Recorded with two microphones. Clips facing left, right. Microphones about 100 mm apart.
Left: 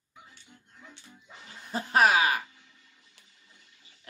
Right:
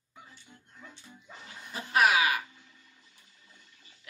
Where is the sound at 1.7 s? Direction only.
35° left (ahead or behind).